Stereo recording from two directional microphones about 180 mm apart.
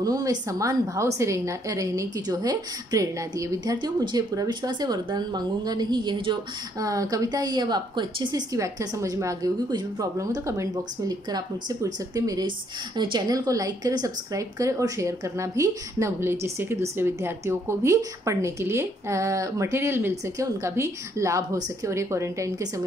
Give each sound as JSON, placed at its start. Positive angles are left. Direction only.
{"t": 0.0, "sound": "a woman's voice", "side_deg": -20}